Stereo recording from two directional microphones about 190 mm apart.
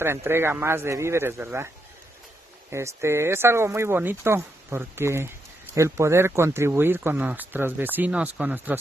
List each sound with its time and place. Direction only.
0.0 s speech: 15° right (ahead or behind)
2.7 s speech: 15° right (ahead or behind)